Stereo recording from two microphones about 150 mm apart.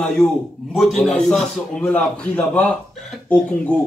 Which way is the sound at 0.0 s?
5° left (ahead or behind).